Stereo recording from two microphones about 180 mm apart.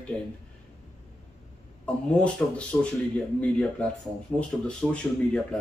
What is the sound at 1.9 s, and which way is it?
Speech, 5° left (ahead or behind).